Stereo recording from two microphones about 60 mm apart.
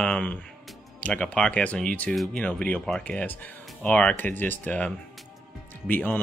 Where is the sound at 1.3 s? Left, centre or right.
Centre.